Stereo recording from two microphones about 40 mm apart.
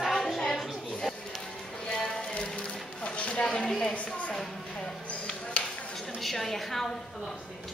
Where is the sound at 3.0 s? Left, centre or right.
Left.